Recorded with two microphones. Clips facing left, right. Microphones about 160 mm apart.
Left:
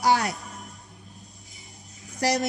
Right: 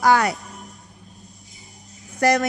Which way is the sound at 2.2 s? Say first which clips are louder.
Right 6 dB; 55° right (ahead or behind).